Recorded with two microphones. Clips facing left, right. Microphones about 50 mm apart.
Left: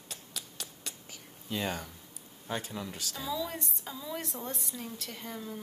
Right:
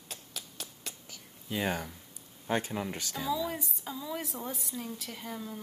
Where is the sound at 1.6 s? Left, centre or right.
Right.